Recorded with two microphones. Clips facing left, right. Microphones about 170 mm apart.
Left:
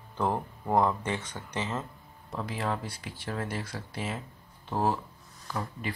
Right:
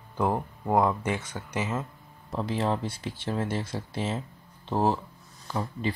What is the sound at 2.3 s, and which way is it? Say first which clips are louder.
Speech: right 5 dB; 25° right (ahead or behind).